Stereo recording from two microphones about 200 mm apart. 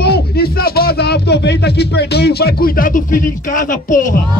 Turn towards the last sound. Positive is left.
turn(degrees=40)  # may be behind; listen again after turning